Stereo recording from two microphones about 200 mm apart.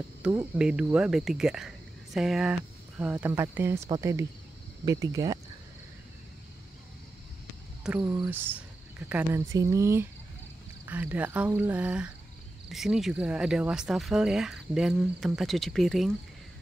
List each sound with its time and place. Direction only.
0.4 s speech: 5° right (ahead or behind)
8.0 s speech: 20° right (ahead or behind)
8.3 s speech: 10° right (ahead or behind)